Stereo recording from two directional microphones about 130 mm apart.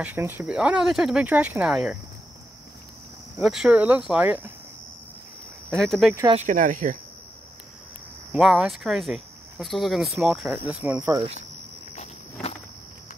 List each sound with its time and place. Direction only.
0.0 s speech: 15° right (ahead or behind)
3.4 s speech: 5° right (ahead or behind)
5.8 s speech: centre (ahead or behind)
6.3 s speech: 80° right
8.4 s speech: centre (ahead or behind)
10.5 s speech: 10° right (ahead or behind)
11.9 s walk: 55° left (ahead or behind)